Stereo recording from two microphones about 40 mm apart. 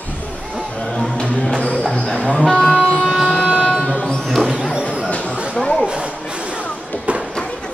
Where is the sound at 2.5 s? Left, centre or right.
Centre.